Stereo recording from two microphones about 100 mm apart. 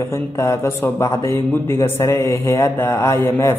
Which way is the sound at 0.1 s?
30° left (ahead or behind).